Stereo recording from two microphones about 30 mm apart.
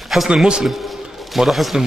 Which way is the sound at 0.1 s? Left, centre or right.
Centre.